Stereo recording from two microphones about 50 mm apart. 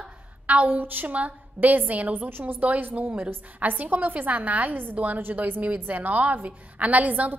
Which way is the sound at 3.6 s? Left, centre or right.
Right.